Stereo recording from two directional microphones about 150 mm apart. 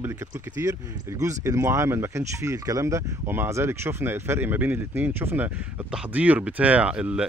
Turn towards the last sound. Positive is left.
turn(degrees=-5)  # may be behind; listen again after turning